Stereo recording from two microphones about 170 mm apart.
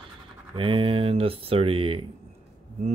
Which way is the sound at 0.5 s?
30° right (ahead or behind).